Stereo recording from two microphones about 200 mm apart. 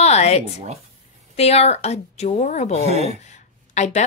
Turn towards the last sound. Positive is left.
turn(degrees=35)  # may be behind; listen again after turning